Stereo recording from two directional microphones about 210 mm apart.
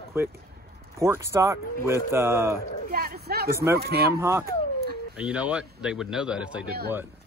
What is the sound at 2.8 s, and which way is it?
Speech, 45° right (ahead or behind).